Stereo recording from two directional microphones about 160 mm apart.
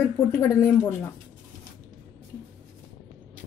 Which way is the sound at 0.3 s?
15° left (ahead or behind).